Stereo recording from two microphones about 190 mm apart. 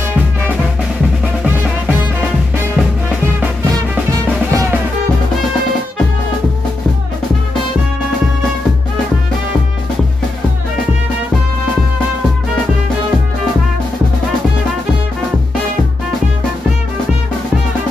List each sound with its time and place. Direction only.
4.5 s music: 15° right (ahead or behind)